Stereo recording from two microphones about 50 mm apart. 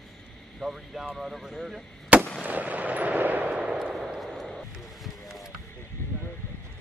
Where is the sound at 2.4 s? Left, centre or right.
Right.